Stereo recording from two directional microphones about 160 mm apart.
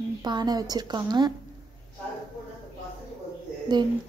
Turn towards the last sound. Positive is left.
turn(degrees=-25)  # may be behind; listen again after turning